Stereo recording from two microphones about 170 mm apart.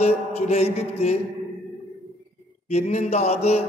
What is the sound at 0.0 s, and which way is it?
A man's voice, 40° left (ahead or behind).